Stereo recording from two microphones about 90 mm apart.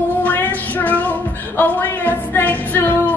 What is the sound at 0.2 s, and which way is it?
Music, 20° left (ahead or behind).